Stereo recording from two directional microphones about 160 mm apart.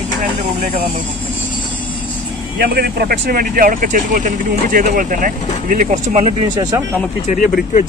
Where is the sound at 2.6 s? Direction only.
75° right (ahead or behind); by 6.3 s 45° right (ahead or behind).